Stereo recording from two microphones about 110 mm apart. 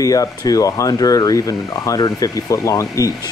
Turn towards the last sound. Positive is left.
turn(degrees=30)  # may be behind; listen again after turning